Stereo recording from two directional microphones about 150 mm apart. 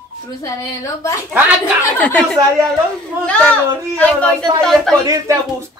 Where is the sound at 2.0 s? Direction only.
5° left (ahead or behind).